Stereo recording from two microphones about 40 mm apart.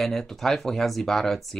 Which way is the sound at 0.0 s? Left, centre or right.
Centre.